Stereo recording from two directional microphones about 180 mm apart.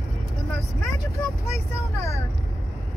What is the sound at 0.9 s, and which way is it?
Vehicle, 15° left (ahead or behind).